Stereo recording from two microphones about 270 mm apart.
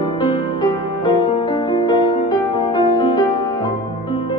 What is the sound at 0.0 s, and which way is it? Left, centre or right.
Music, centre.